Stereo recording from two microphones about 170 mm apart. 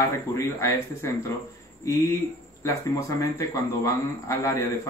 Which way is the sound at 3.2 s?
20° left (ahead or behind).